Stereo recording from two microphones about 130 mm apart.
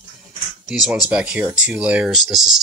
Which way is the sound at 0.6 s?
Centre (ahead or behind).